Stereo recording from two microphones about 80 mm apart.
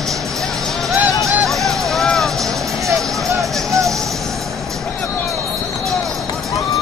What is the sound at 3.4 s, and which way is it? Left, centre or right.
Music, right.